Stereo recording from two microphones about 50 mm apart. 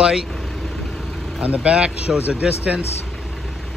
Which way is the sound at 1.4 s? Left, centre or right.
Right.